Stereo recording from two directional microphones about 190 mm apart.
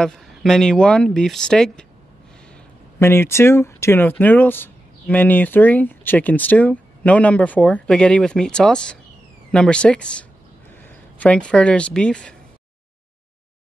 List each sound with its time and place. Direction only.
0.0 s speech: centre (ahead or behind)
3.0 s speech: 10° left (ahead or behind)